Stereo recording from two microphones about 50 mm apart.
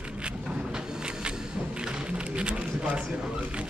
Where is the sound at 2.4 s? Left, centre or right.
Right.